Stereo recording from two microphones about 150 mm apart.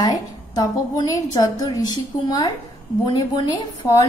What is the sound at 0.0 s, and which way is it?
A woman's voice, 25° left (ahead or behind).